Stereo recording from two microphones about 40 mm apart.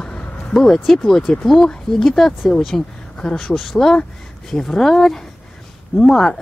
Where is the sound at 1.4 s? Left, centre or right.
Centre.